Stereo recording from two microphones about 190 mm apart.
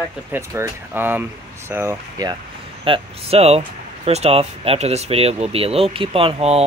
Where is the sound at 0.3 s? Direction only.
15° right (ahead or behind).